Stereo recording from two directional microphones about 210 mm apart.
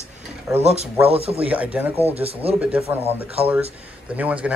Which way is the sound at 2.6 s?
5° right (ahead or behind).